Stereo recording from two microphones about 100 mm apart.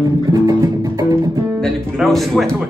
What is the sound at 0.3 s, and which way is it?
Music, 40° right (ahead or behind).